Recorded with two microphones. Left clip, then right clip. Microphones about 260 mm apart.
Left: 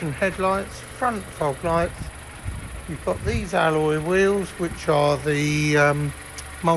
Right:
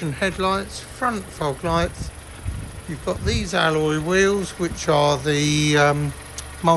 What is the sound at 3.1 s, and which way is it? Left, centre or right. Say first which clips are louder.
Speech: right 1 dB; centre.